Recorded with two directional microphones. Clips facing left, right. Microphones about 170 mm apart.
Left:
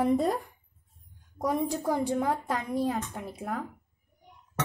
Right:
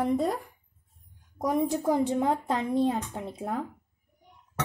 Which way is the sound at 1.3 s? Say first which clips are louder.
Right 2 dB; 15° right (ahead or behind).